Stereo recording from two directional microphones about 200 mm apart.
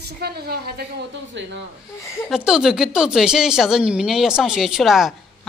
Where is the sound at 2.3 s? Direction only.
5° right (ahead or behind).